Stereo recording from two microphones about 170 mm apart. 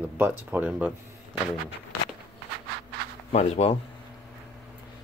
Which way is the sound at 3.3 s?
40° left (ahead or behind).